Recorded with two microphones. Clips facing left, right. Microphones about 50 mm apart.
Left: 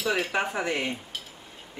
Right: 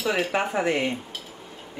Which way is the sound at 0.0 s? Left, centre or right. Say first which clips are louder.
Right 2 dB; centre.